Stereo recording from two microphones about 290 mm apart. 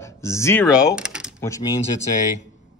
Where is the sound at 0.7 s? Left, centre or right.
Centre.